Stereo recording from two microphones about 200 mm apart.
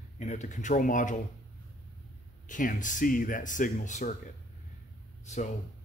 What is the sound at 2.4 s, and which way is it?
Speech, 40° left (ahead or behind).